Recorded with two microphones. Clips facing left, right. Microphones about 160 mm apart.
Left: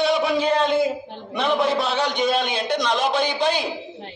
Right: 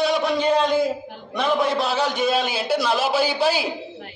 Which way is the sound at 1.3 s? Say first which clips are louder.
Even; centre (ahead or behind).